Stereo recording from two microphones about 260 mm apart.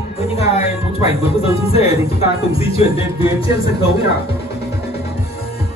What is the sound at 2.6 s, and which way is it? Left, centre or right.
Speech, left.